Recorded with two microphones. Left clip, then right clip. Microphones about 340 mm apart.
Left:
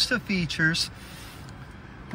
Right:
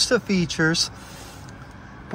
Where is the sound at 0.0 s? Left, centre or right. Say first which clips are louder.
Right 5 dB; centre.